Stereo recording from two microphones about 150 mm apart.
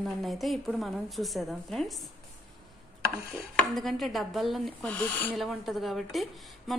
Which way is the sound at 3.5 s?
5° left (ahead or behind).